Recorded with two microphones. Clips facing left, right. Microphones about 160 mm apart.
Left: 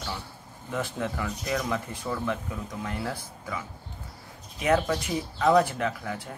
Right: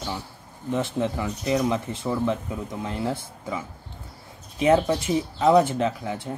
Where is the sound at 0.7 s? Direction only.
20° right (ahead or behind).